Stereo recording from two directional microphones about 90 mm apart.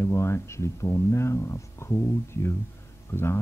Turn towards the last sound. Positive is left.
turn(degrees=25)  # may be behind; listen again after turning